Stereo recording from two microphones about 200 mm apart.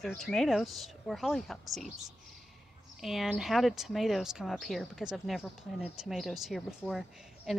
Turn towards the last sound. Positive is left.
turn(degrees=0)  # may be behind; listen again after turning